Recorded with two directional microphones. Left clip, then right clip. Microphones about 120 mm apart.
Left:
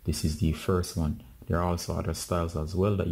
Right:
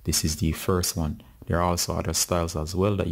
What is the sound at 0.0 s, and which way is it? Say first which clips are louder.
Speech: right 5 dB; 30° right (ahead or behind).